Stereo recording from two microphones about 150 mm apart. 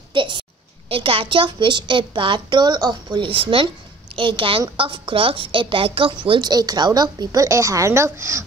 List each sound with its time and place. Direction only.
0.1 s a child's voice: 35° right (ahead or behind)